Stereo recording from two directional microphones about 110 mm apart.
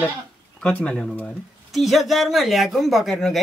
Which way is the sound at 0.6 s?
10° left (ahead or behind).